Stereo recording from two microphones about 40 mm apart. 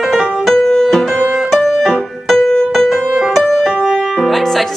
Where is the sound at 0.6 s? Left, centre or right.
Centre.